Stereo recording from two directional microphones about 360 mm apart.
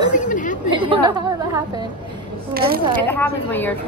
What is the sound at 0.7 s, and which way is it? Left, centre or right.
A woman's voice, centre.